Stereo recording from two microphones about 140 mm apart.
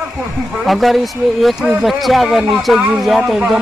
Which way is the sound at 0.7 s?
Centre (ahead or behind).